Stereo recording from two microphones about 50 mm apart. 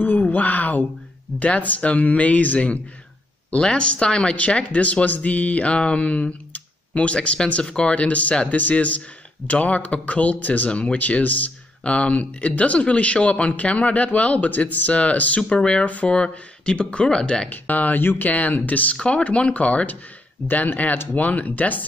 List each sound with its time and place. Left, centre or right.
0.0 s a sound: left
1.4 s speech: left
7.9 s speech: left
17.5 s speech: left
18.9 s speech: left
20.4 s speech: left